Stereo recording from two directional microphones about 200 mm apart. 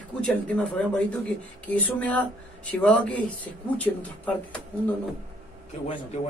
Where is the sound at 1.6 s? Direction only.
5° left (ahead or behind).